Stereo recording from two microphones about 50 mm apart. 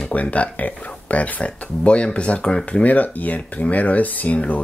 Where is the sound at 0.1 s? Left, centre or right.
Left.